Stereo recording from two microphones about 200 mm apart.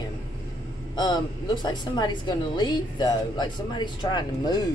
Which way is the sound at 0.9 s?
20° left (ahead or behind).